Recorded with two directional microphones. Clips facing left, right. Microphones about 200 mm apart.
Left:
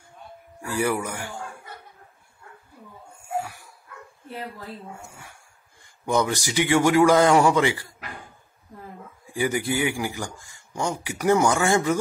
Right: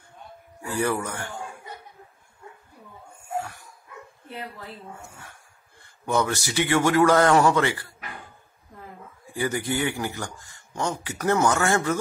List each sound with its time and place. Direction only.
0.7 s a man's voice: 10° left (ahead or behind)
3.3 s dog: 10° left (ahead or behind)
5.8 s a man's voice: 15° left (ahead or behind)
9.2 s a man's voice: 15° left (ahead or behind)